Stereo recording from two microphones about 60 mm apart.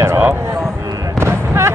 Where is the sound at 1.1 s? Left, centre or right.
Right.